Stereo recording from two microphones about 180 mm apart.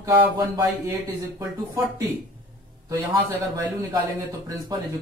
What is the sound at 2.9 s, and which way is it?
Speech, 20° right (ahead or behind).